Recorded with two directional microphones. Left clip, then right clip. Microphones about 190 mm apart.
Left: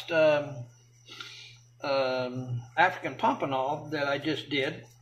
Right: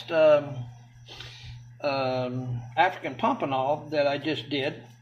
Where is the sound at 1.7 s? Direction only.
10° right (ahead or behind).